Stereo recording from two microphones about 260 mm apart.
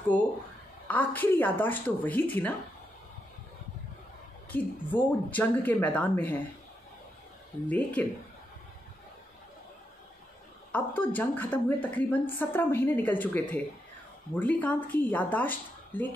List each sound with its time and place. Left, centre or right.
0.1 s a sound: centre
0.8 s a woman's voice: centre
4.5 s a woman's voice: centre
7.6 s speech: centre
10.7 s a woman's voice: centre